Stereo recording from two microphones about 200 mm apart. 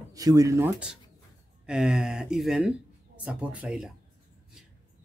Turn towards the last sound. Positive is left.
turn(degrees=-5)  # may be behind; listen again after turning